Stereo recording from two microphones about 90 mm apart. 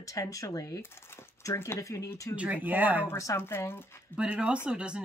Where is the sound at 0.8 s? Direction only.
25° left (ahead or behind).